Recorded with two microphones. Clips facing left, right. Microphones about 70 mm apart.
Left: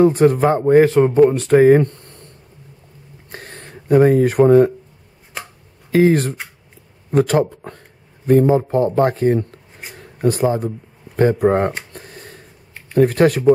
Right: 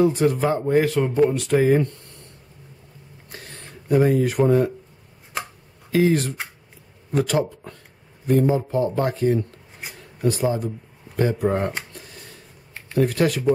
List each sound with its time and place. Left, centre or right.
0.0 s speech: left
3.3 s shuffling cards: left
5.9 s speech: left
11.9 s a sound: left
12.9 s speech: left